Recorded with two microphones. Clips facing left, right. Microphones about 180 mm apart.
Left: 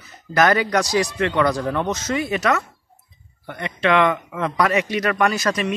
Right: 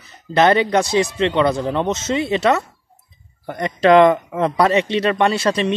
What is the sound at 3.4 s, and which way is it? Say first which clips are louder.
Speech: right 7 dB; 40° right (ahead or behind).